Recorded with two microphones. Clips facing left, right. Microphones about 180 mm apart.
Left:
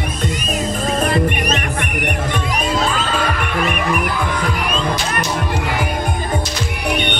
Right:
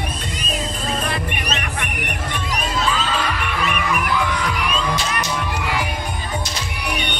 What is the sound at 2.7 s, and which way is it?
Music, 50° left (ahead or behind).